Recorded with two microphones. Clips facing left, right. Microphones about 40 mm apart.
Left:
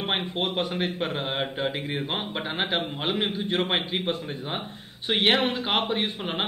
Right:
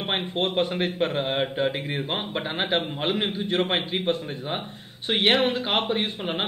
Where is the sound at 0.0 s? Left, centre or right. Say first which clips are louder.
Even; centre.